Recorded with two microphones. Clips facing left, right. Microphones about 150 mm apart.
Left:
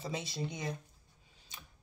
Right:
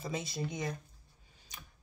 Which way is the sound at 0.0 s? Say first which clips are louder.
Right 1 dB; 30° left (ahead or behind).